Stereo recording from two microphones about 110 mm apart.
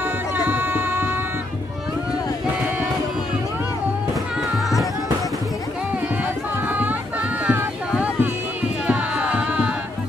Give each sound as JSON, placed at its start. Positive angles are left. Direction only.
{"t": 0.5, "sound": "music", "side_deg": -20}
{"t": 6.7, "sound": "music", "side_deg": -15}
{"t": 7.4, "sound": "a sound", "side_deg": -15}
{"t": 8.8, "sound": "music", "side_deg": -10}